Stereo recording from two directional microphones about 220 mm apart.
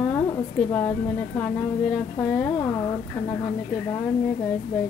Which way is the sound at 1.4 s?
Centre (ahead or behind).